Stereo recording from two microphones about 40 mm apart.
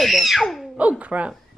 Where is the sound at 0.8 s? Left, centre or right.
Right.